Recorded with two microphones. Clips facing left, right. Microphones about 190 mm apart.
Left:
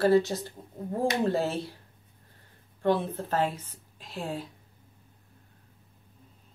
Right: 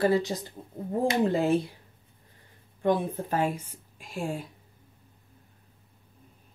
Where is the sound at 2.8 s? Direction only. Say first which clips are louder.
Right 1 dB; 15° right (ahead or behind).